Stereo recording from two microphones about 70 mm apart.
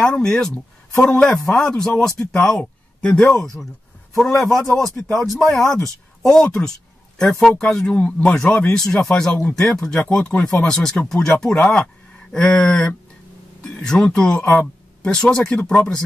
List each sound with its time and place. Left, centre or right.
0.0 s speech: centre
2.3 s a sound: centre
3.2 s speech: centre
10.7 s speech: centre
12.3 s speech: centre